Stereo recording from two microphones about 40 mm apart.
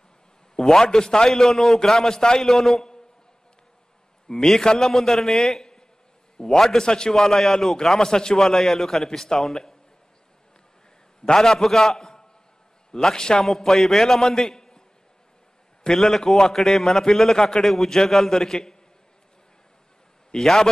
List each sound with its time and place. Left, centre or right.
0.6 s a man's voice: centre
4.3 s a man's voice: centre
5.6 s a sound: centre
6.3 s a man's voice: centre
7.2 s a man's voice: centre
8.0 s a man's voice: centre
11.3 s a man's voice: centre
13.5 s a man's voice: centre
15.8 s a man's voice: centre
20.2 s a man's voice: centre